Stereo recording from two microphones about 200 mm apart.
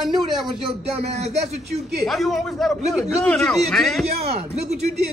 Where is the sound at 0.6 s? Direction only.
30° right (ahead or behind).